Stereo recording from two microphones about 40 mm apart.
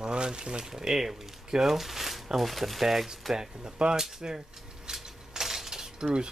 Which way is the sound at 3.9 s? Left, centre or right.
Centre.